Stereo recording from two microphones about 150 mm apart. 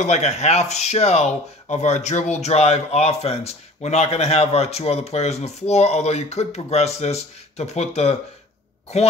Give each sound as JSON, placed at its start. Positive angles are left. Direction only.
{"t": 0.0, "sound": "speech", "side_deg": 50}